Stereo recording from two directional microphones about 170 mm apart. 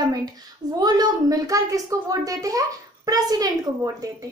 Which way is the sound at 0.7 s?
25° right (ahead or behind).